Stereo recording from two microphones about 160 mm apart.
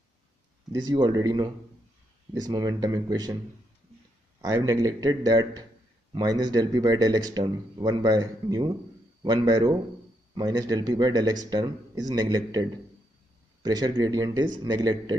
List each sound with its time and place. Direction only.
0.7 s a man's voice: 25° right (ahead or behind)
4.4 s a man's voice: 20° right (ahead or behind)